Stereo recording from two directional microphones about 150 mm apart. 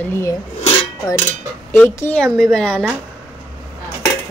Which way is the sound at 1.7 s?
15° left (ahead or behind).